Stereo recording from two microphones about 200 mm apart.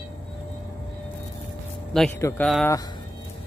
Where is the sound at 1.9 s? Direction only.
5° left (ahead or behind).